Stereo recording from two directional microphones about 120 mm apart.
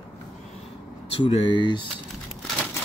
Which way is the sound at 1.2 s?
45° left (ahead or behind).